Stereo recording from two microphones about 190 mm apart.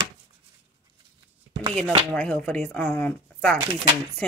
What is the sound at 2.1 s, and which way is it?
Speech, 5° left (ahead or behind).